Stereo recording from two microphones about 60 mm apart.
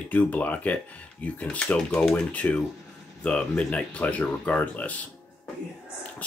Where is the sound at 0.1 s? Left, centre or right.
Left.